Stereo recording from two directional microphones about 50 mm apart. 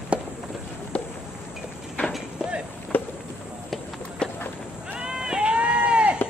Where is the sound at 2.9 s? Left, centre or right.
Left.